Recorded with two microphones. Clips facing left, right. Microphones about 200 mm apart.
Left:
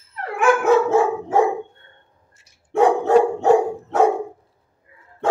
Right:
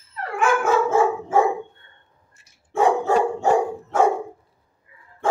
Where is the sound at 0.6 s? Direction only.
65° left (ahead or behind).